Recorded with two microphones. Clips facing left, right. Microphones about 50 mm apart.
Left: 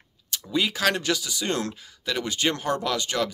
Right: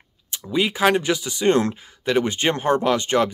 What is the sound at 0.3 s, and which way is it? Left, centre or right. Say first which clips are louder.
Speech: right 4 dB; right.